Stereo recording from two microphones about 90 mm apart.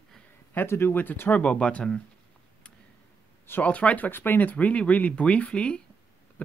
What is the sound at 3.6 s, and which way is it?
Speech, 15° left (ahead or behind).